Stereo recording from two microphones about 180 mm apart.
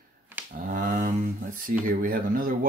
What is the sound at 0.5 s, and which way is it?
Speech, 50° right (ahead or behind).